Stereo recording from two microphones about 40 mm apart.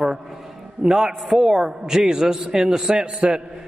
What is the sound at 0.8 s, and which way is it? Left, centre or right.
A man's voice, centre.